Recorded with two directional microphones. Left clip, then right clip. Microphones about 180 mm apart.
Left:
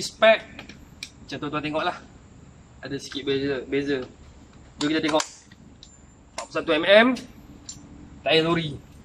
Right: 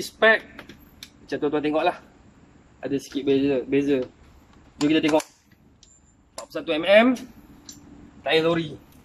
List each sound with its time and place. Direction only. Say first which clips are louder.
0.0 s speech: left 1 dB; 5° left (ahead or behind)
6.3 s a sound: left 3 dB; 25° right (ahead or behind)
6.8 s speech: even; 5° right (ahead or behind)
8.2 s a man's voice: even; 5° left (ahead or behind)